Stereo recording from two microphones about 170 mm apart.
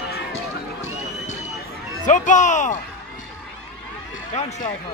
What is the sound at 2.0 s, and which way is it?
Speech, 45° left (ahead or behind).